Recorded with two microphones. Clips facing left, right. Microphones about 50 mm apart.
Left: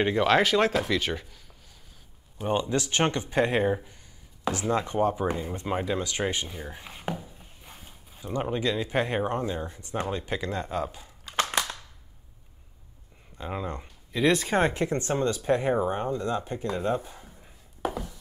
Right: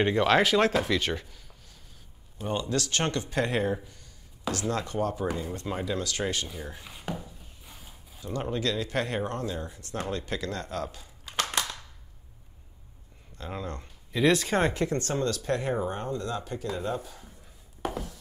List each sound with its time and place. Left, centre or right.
0.0 s speech: centre
2.3 s speech: centre
7.2 s a sound: left
8.1 s speech: centre
13.4 s speech: centre
14.7 s speech: left
17.8 s a sound: centre